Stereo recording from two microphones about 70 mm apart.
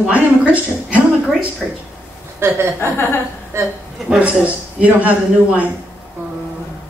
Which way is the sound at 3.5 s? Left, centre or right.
Right.